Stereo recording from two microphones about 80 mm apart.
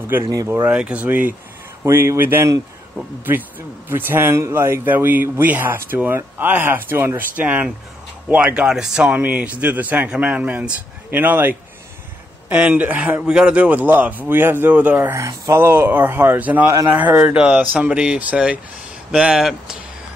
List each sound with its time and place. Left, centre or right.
0.1 s speech: right
1.9 s speech: right
3.9 s speech: right
15.1 s speech: right
15.6 s speech: right; by 19.8 s centre